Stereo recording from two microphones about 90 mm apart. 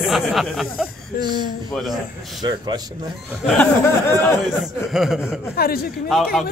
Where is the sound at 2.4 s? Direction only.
50° right (ahead or behind).